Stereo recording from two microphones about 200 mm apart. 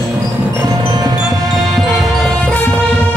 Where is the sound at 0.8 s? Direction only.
20° right (ahead or behind).